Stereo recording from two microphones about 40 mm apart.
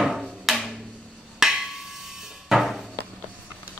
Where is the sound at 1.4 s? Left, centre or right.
Centre.